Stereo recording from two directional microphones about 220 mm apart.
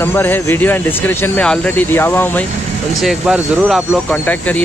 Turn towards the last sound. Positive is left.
turn(degrees=5)  # may be behind; listen again after turning